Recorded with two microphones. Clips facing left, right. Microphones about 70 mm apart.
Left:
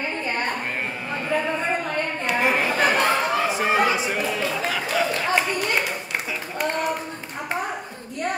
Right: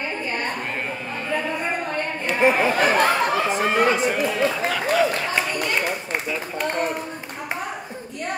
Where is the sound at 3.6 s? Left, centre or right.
Centre.